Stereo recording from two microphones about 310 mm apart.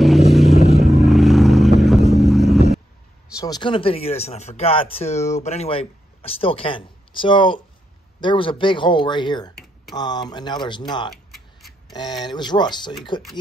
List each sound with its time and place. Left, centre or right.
0.3 s vehicle: centre
0.6 s vehicle: centre
1.0 s vehicle: centre
3.3 s speech: centre
11.1 s tick-tock: centre
11.9 s speech: centre